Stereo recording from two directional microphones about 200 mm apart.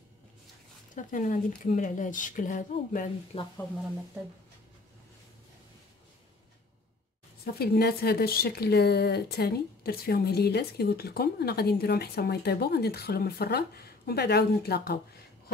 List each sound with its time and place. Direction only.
0.9 s speech: 40° left (ahead or behind)
7.5 s a woman's voice: 50° left (ahead or behind)